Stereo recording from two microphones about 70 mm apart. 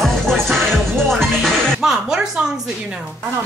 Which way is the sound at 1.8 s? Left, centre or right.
Centre.